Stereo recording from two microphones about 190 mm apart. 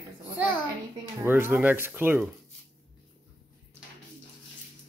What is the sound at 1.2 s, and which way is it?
Speech, 10° right (ahead or behind).